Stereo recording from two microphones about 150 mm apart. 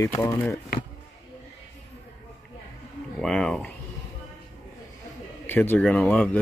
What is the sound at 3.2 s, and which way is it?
Speech, 5° left (ahead or behind).